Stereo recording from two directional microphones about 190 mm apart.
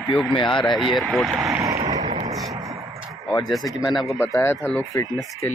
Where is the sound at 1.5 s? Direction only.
15° right (ahead or behind).